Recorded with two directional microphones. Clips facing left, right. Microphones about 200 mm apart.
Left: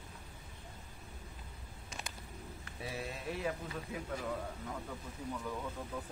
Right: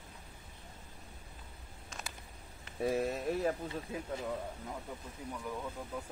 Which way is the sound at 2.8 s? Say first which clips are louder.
Right 10 dB; 50° right (ahead or behind).